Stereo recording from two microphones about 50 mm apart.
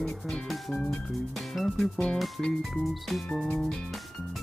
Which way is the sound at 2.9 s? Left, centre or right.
Centre.